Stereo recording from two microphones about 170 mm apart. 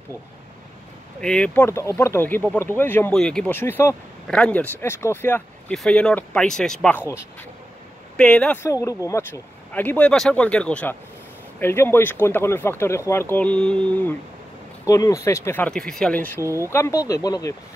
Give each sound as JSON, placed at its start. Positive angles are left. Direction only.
{"t": 1.2, "sound": "speech", "side_deg": 5}
{"t": 8.2, "sound": "speech", "side_deg": 5}
{"t": 8.6, "sound": "speech", "side_deg": 20}
{"t": 14.9, "sound": "speech", "side_deg": 20}
{"t": 16.3, "sound": "speech", "side_deg": -15}
{"t": 16.7, "sound": "speech", "side_deg": 15}